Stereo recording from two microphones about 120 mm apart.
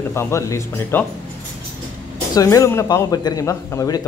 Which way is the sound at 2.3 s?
30° left (ahead or behind).